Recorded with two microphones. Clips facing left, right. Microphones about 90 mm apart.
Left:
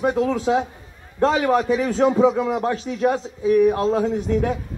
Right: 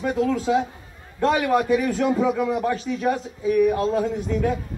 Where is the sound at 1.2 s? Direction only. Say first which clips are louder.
Left 2 dB; 30° left (ahead or behind).